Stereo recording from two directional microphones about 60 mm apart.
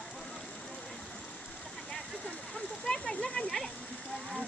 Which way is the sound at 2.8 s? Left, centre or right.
Centre.